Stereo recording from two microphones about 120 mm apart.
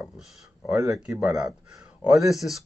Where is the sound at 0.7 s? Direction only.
25° right (ahead or behind).